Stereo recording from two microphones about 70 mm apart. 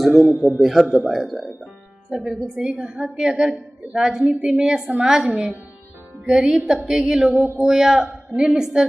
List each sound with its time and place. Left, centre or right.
0.0 s a man's voice: centre
7.1 s a man's voice: centre